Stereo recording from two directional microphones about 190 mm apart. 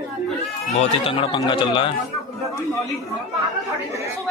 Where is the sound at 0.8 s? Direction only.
30° left (ahead or behind).